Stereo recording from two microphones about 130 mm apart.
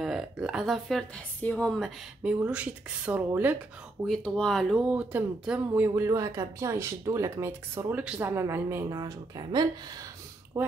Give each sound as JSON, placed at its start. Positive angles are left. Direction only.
{"t": 0.0, "sound": "speech", "side_deg": -5}
{"t": 2.2, "sound": "speech", "side_deg": -10}
{"t": 4.0, "sound": "speech", "side_deg": 5}
{"t": 5.9, "sound": "speech", "side_deg": -25}